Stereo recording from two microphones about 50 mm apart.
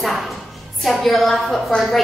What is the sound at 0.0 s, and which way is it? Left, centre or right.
Music, centre.